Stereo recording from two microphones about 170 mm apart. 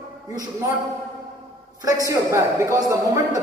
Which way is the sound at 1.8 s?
20° right (ahead or behind).